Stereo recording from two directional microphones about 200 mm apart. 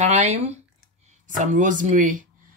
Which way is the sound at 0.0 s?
35° right (ahead or behind).